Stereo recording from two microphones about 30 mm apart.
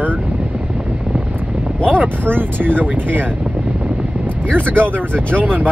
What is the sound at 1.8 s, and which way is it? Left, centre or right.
Speech, right.